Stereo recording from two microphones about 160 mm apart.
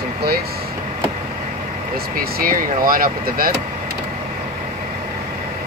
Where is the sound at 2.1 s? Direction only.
65° right (ahead or behind).